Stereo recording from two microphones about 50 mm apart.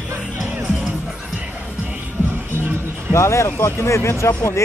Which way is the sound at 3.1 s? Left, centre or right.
Left.